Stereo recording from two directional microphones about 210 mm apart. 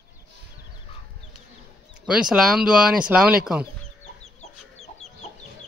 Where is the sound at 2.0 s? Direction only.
5° right (ahead or behind).